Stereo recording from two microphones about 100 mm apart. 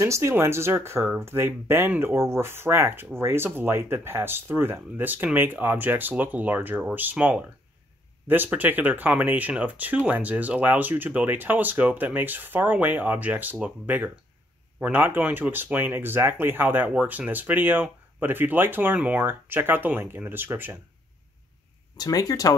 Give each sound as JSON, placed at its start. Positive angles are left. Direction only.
{"t": 0.0, "sound": "speech", "side_deg": -30}
{"t": 21.9, "sound": "speech", "side_deg": 40}